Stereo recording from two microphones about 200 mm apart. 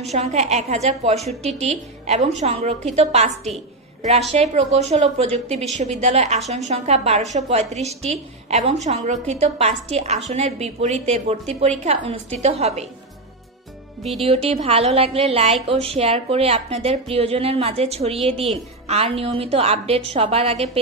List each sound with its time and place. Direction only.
0.1 s a woman's voice: 35° right (ahead or behind)
14.2 s a woman's voice: 30° right (ahead or behind)